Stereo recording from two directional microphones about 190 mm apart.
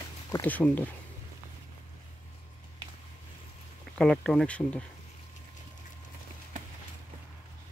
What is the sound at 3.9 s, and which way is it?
Speech, 5° left (ahead or behind).